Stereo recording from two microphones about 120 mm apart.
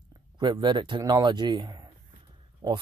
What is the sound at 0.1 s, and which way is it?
Speech, 40° right (ahead or behind).